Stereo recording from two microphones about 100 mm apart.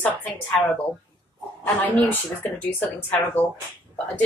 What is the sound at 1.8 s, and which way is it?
Speech, 20° left (ahead or behind).